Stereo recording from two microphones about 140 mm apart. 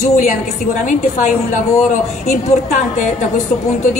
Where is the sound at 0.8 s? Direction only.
60° left (ahead or behind).